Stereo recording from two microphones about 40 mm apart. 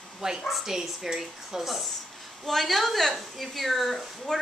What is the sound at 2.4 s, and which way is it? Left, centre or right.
A woman's voice, centre.